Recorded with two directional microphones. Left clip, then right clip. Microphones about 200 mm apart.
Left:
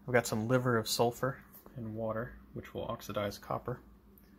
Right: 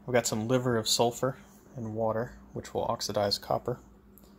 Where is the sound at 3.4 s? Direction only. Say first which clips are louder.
Right 7 dB; 15° right (ahead or behind).